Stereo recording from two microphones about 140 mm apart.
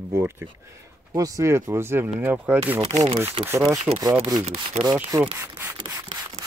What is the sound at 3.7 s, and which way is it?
Speech, 30° right (ahead or behind).